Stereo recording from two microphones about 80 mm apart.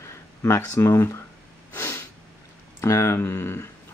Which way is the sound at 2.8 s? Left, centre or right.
Left.